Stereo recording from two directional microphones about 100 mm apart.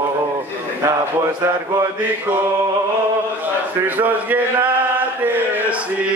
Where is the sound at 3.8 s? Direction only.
15° right (ahead or behind).